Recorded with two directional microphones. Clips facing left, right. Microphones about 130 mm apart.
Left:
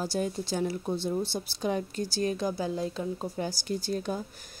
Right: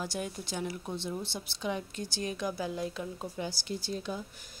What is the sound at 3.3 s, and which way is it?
Speech, 45° left (ahead or behind).